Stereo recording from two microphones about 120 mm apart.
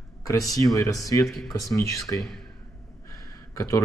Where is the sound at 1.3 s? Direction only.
Centre (ahead or behind).